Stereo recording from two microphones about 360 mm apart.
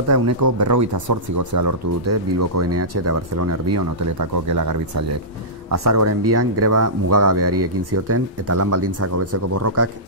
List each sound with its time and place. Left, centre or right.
0.1 s speech: right
1.4 s speech: right
2.6 s speech: right
4.2 s speech: right
5.7 s speech: right